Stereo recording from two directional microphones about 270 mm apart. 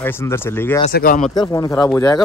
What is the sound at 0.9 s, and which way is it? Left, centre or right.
Speech, left.